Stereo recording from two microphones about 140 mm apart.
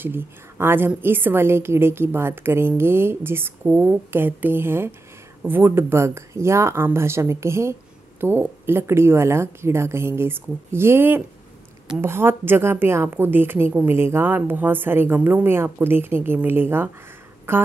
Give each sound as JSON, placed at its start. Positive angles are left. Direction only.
{"t": 0.0, "sound": "a woman's voice", "side_deg": -15}